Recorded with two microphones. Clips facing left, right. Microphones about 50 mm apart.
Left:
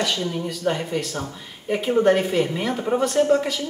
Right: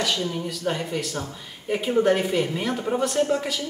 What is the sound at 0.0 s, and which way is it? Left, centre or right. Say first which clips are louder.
A woman's voice: left 1 dB; centre.